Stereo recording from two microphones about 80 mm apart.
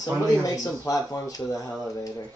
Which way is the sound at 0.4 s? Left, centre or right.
Left.